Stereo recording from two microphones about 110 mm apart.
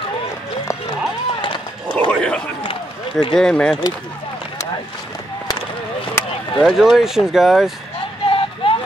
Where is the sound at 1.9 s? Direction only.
10° left (ahead or behind).